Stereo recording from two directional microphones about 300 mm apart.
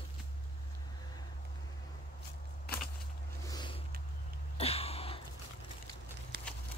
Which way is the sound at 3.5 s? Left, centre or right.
Centre.